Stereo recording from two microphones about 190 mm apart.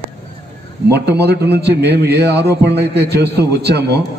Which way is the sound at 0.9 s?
60° right (ahead or behind).